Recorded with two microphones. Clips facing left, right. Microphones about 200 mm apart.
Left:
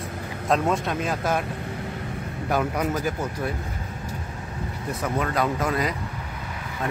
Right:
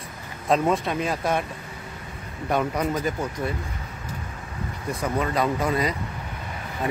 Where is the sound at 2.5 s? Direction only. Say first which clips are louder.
Right 1 dB; 5° left (ahead or behind).